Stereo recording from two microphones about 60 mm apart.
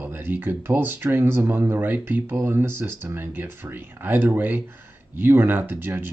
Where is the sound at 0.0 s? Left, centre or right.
Right.